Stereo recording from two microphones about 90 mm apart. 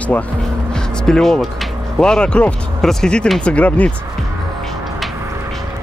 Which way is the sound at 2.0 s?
10° left (ahead or behind).